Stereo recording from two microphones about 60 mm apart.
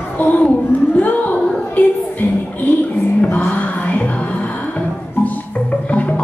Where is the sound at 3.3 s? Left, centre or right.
Left.